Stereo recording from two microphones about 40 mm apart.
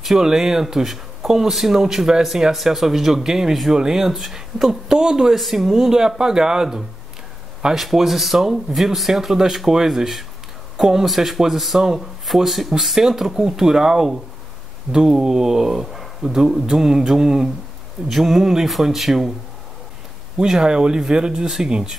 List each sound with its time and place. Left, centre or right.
0.0 s speech: centre
20.3 s speech: centre